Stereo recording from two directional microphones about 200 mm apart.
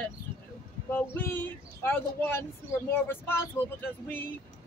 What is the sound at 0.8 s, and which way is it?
Speech, 10° left (ahead or behind).